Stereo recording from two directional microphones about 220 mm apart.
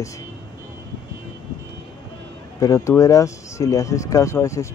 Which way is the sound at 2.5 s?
15° left (ahead or behind).